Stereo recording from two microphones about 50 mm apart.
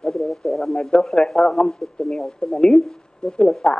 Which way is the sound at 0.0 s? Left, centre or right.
Centre.